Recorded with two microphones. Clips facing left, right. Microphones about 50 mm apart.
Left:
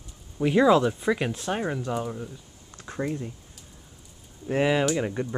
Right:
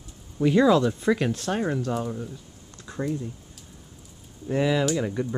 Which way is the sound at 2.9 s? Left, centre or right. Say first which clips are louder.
Left 1 dB; left.